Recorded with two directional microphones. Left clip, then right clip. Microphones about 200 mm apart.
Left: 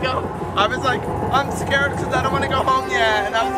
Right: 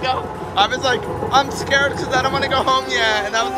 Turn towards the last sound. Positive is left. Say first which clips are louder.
# even
turn(degrees=-10)  # may be behind; listen again after turning